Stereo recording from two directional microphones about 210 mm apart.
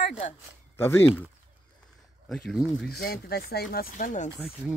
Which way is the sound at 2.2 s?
5° left (ahead or behind).